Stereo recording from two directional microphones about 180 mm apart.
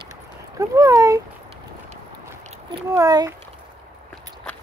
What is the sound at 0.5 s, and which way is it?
Speech, 20° right (ahead or behind).